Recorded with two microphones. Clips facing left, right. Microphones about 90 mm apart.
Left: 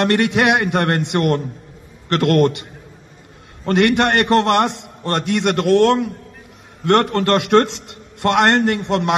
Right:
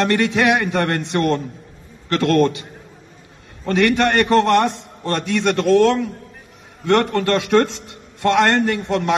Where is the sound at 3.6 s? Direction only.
65° left (ahead or behind).